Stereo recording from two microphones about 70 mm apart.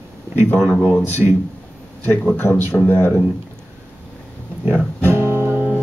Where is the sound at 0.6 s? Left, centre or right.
Centre.